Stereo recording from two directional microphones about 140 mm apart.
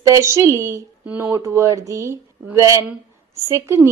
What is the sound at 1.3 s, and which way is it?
A woman's voice, 20° right (ahead or behind).